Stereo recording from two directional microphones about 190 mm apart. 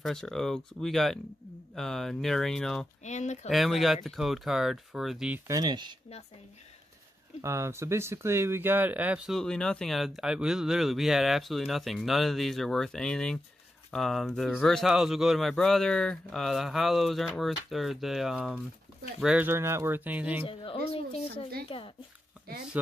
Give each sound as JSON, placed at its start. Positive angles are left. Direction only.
{"t": 0.0, "sound": "speech", "side_deg": 0}
{"t": 3.0, "sound": "speech", "side_deg": 40}
{"t": 3.4, "sound": "speech", "side_deg": 0}
{"t": 5.5, "sound": "speech", "side_deg": -20}
{"t": 7.4, "sound": "speech", "side_deg": -15}
{"t": 21.6, "sound": "speech", "side_deg": 25}